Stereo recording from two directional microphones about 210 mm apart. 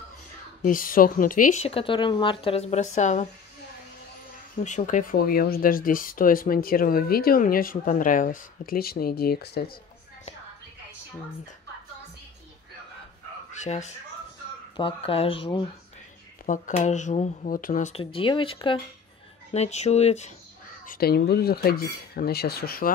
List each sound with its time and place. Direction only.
0.6 s speech: 40° left (ahead or behind)
4.6 s speech: 35° left (ahead or behind)
13.5 s speech: 35° left (ahead or behind)
20.8 s speech: 45° left (ahead or behind)